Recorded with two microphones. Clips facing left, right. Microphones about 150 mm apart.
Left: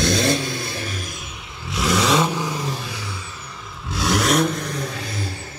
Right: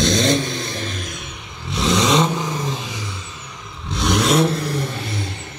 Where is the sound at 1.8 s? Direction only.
20° right (ahead or behind).